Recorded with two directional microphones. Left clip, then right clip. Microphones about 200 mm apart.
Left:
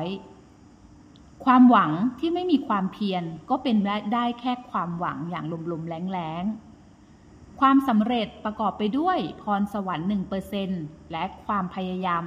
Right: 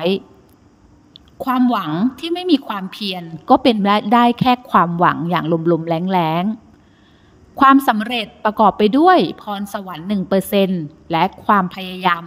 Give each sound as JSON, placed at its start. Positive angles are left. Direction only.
{"t": 1.9, "sound": "a woman's voice", "side_deg": -35}
{"t": 7.5, "sound": "a woman's voice", "side_deg": -40}